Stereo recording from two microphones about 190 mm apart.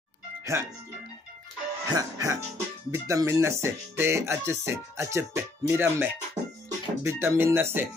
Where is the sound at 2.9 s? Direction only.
15° right (ahead or behind).